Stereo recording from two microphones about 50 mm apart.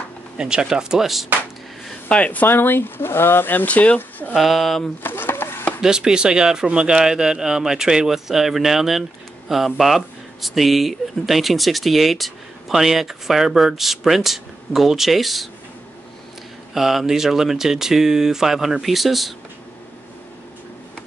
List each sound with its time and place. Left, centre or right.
0.4 s speech: centre
2.0 s speech: left
2.4 s speech: left
3.6 s speech: left
4.4 s speech: centre
5.0 s a sound: left
5.8 s speech: centre
16.7 s speech: centre